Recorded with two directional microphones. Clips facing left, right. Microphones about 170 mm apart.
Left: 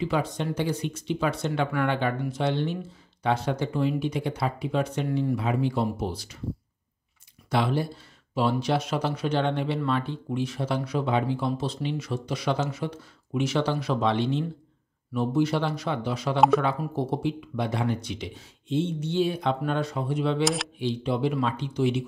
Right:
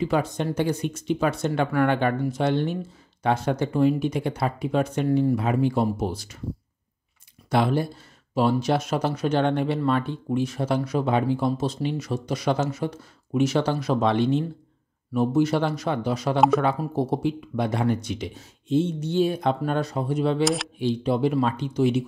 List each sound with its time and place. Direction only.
0.0 s speech: 45° right (ahead or behind)
7.5 s speech: 45° right (ahead or behind)
16.3 s speech: centre (ahead or behind)
16.6 s speech: 40° right (ahead or behind)
20.4 s speech: centre (ahead or behind)
20.8 s speech: 40° right (ahead or behind)